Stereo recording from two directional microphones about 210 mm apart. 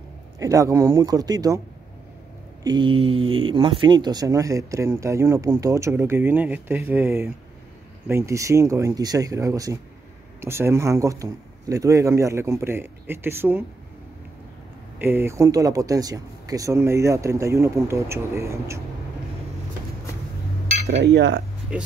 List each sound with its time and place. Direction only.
0.4 s speech: 15° right (ahead or behind)
2.6 s speech: 20° right (ahead or behind)
15.0 s speech: 10° right (ahead or behind)
21.0 s cutlery: 55° right (ahead or behind)